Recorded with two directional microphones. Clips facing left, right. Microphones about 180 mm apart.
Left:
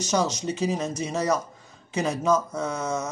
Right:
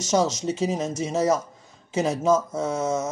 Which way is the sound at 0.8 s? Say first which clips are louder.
Right 2 dB; 90° right.